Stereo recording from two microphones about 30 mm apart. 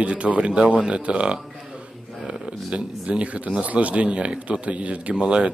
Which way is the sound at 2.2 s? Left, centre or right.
Right.